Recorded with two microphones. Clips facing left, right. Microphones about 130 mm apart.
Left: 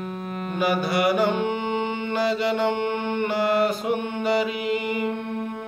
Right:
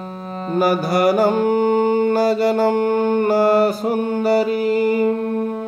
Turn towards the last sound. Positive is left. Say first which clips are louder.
# right 9 dB
turn(degrees=-35)  # may be behind; listen again after turning